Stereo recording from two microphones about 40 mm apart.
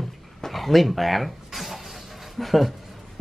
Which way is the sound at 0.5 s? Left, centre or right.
Centre.